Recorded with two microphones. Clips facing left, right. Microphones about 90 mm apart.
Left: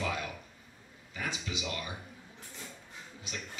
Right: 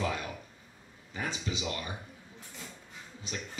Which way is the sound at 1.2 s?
35° right (ahead or behind).